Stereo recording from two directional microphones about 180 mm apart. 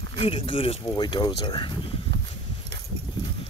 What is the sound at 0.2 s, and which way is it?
Speech, 30° left (ahead or behind).